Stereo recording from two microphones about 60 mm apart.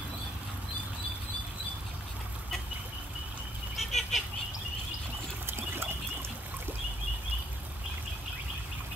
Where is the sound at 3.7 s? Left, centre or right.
Centre.